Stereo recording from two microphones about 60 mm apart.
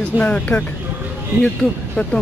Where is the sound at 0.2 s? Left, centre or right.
Left.